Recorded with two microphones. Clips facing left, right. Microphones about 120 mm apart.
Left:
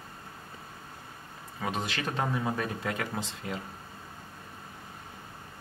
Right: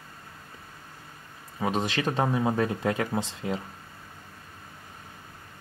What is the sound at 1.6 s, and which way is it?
Speech, 25° right (ahead or behind).